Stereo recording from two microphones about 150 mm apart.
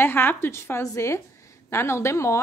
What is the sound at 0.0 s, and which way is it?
A woman's voice, 15° left (ahead or behind).